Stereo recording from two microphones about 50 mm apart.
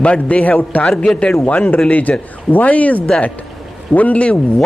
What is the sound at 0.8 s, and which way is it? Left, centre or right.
Speech, centre.